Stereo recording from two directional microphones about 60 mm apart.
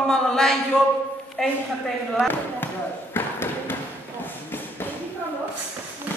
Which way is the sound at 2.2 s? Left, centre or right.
Left.